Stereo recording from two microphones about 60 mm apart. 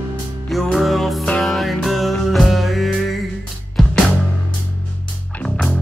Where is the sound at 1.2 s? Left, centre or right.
Centre.